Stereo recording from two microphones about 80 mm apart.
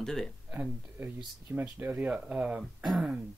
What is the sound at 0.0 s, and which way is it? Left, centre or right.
Speech, centre.